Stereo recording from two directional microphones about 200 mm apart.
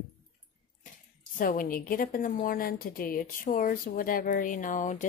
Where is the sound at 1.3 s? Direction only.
45° left (ahead or behind).